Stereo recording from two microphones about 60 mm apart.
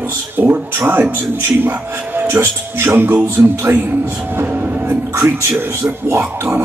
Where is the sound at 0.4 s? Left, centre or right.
Right.